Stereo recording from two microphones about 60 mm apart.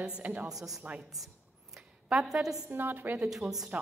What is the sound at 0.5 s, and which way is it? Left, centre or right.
Speech, centre.